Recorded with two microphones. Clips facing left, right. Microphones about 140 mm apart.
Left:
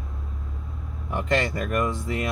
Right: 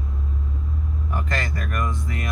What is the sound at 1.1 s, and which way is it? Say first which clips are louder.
Speech: left 5 dB; 25° left (ahead or behind).